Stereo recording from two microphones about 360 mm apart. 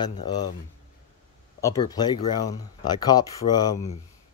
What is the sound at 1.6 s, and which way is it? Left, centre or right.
Speech, centre.